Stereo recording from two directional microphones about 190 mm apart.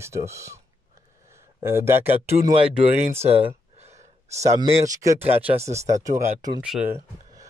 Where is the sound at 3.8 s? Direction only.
35° right (ahead or behind).